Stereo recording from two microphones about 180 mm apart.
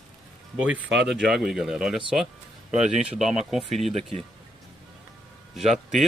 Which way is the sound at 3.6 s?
35° right (ahead or behind).